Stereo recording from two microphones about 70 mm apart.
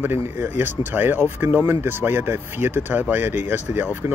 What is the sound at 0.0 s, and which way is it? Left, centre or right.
Speech, right.